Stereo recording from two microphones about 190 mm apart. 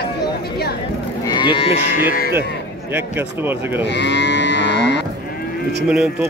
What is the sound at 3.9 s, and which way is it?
Livestock, 70° left (ahead or behind).